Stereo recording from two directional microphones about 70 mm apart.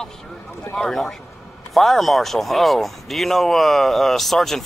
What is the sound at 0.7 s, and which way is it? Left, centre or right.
Speech, centre.